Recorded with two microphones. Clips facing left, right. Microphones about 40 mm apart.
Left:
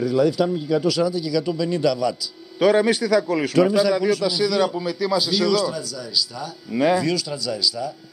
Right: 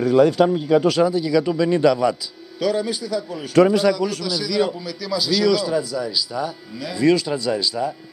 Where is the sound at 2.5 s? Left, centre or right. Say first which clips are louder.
Left 5 dB; left.